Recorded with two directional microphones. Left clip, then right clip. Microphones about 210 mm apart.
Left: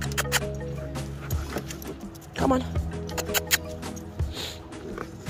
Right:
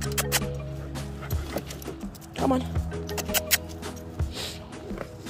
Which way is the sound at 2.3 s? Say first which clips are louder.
Left 1 dB; centre (ahead or behind).